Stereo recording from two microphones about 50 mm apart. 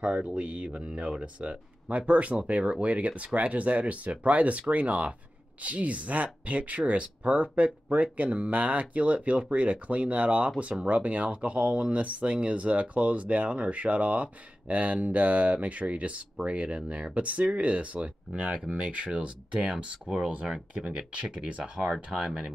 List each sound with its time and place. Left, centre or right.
0.0 s speech: centre
18.9 s speech: right
21.8 s speech: centre